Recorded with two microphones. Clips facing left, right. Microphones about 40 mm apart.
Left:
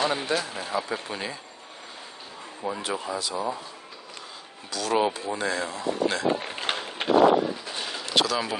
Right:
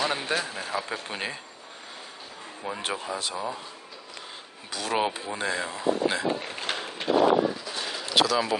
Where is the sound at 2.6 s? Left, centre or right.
Right.